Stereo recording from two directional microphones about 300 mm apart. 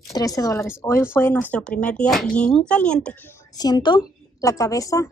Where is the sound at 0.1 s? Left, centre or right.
Centre.